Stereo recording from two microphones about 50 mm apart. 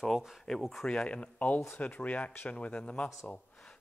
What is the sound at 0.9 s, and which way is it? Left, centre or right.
Speech, left.